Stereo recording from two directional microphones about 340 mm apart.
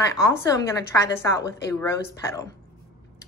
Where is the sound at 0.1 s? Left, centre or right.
Centre.